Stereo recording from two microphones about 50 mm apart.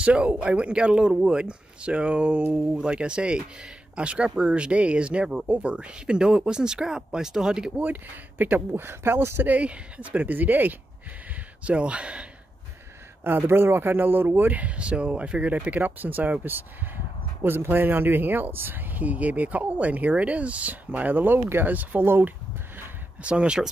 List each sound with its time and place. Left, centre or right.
0.0 s speech: right
7.8 s speech: right
9.6 s speech: right
11.6 s speech: right
13.2 s speech: right
14.5 s speech: right
19.0 s speech: right
23.2 s speech: right